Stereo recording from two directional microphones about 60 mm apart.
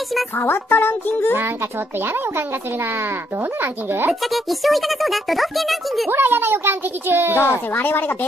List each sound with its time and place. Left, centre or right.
0.4 s a woman's voice: left
3.6 s a child's voice: right
4.1 s a child's voice: centre
6.0 s a child's voice: right
7.3 s a woman's voice: left